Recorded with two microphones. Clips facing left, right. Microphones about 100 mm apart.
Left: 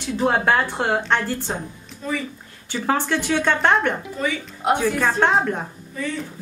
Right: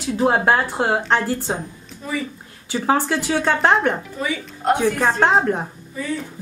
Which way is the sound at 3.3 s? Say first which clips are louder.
Right 2 dB; 35° right (ahead or behind).